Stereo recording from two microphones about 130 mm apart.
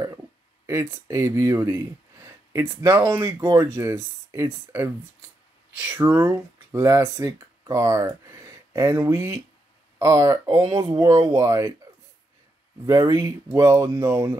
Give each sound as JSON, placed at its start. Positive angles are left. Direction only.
{"t": 0.7, "sound": "speech", "side_deg": -20}
{"t": 12.8, "sound": "speech", "side_deg": -30}